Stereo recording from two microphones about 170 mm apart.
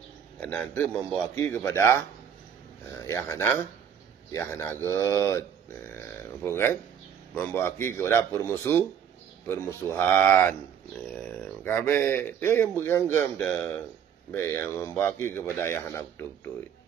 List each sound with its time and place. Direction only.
0.4 s speech: 10° left (ahead or behind)
6.4 s speech: 15° left (ahead or behind)
9.8 s speech: 10° left (ahead or behind)